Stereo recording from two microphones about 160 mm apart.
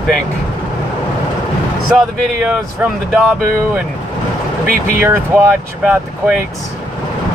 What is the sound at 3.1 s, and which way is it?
Speech, centre (ahead or behind).